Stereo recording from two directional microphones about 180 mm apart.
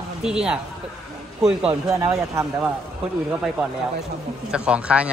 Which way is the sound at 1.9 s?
15° right (ahead or behind).